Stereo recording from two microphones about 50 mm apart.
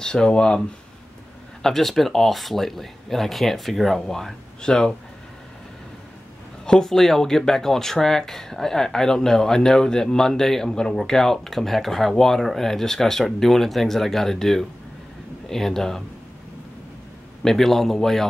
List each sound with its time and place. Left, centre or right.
0.0 s speech: centre
1.6 s speech: centre
6.6 s speech: centre
17.4 s speech: centre